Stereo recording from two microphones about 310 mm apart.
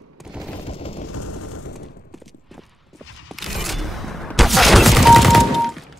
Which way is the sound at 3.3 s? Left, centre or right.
Centre.